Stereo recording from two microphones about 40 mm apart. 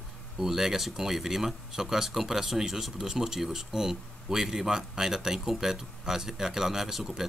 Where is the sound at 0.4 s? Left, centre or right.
Centre.